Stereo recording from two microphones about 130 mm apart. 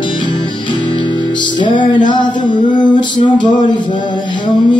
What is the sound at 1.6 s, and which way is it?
Music, 35° left (ahead or behind).